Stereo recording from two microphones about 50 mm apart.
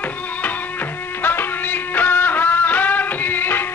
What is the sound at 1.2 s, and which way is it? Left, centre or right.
Music, left.